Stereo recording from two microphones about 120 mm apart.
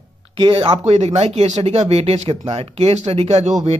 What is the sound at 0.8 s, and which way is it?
Speech, 65° right (ahead or behind).